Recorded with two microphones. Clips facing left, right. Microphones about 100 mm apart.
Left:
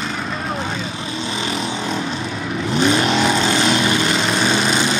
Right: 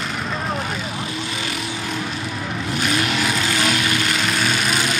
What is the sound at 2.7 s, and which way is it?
Vehicle, 25° left (ahead or behind).